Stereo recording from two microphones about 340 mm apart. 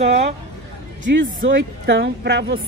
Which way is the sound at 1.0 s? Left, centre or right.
Right.